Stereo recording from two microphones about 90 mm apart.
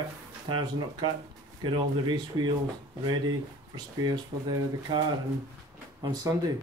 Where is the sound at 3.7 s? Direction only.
50° right (ahead or behind).